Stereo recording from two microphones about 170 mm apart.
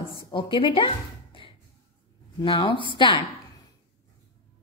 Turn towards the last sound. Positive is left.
turn(degrees=30)  # may be behind; listen again after turning